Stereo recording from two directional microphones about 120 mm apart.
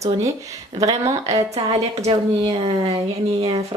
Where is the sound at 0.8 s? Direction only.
30° right (ahead or behind).